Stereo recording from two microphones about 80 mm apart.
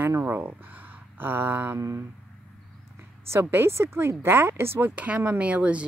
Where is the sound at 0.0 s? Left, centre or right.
Right.